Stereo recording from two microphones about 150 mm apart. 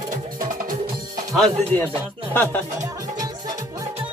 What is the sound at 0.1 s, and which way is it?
Music, 65° right (ahead or behind).